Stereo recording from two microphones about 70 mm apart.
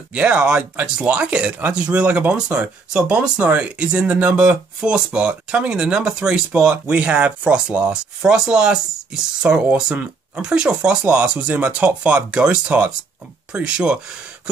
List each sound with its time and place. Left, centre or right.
0.1 s speech: centre